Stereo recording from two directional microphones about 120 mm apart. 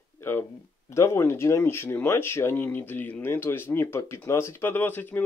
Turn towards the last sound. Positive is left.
turn(degrees=15)  # may be behind; listen again after turning